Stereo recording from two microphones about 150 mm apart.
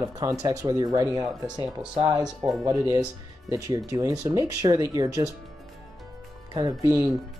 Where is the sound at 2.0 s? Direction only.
25° right (ahead or behind).